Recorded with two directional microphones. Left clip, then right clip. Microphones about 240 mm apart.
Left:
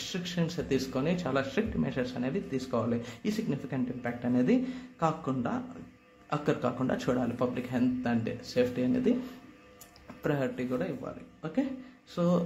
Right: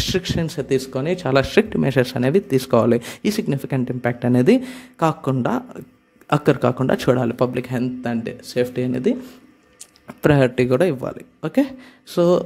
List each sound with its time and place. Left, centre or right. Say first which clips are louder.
0.0 s speech: right 12 dB; right